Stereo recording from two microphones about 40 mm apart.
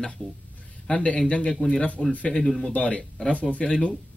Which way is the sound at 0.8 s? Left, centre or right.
Left.